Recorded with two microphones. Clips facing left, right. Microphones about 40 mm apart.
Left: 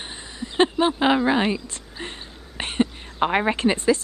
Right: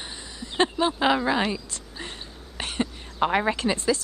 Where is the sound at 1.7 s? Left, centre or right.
Left.